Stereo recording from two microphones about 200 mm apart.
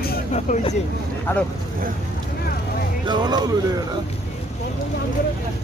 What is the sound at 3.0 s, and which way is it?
Speech, 20° right (ahead or behind).